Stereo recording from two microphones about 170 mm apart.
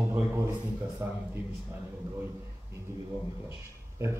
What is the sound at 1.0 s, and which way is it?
Speech, 15° right (ahead or behind).